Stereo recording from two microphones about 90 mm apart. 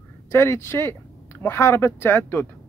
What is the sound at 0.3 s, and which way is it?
Speech, 30° left (ahead or behind).